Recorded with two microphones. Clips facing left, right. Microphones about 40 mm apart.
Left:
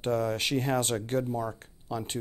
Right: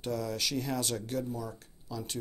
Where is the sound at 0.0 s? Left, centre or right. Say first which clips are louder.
Left 6 dB; left.